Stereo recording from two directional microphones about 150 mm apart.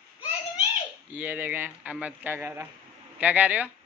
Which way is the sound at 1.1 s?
10° right (ahead or behind).